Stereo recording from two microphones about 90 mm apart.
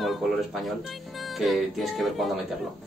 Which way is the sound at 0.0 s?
Centre (ahead or behind).